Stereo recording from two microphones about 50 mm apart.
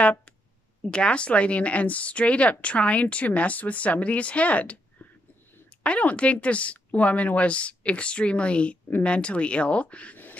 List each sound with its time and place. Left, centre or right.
0.0 s a woman's voice: left
5.9 s a woman's voice: left